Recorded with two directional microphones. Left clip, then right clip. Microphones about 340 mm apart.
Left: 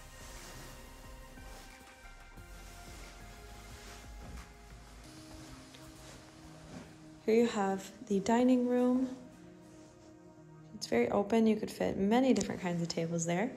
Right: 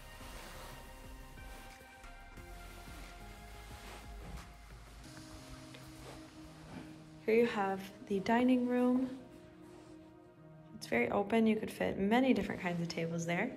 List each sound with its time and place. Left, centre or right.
7.2 s speech: centre
10.8 s speech: centre